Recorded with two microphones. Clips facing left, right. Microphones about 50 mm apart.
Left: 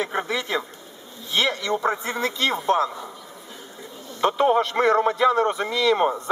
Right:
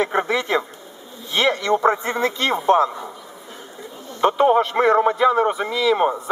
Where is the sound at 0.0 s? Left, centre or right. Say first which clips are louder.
Right 5 dB; right.